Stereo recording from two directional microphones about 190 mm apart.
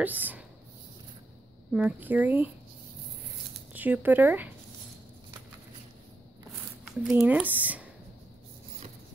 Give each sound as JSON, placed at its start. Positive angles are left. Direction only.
{"t": 0.0, "sound": "speech", "side_deg": -10}
{"t": 1.7, "sound": "speech", "side_deg": -5}
{"t": 3.7, "sound": "speech", "side_deg": -10}
{"t": 6.8, "sound": "speech", "side_deg": -10}